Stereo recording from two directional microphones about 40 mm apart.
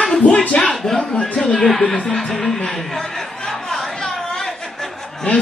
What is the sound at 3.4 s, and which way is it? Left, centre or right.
Chatter, centre.